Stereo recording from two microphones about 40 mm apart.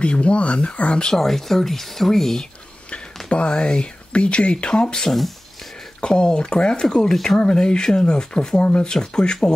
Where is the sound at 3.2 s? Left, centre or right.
Left.